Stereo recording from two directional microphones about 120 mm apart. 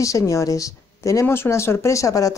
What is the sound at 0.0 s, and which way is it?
Speech, 25° left (ahead or behind).